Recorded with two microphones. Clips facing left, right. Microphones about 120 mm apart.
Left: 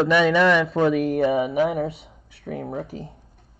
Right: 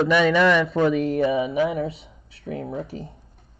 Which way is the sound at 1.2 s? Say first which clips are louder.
Left 1 dB; 60° left (ahead or behind).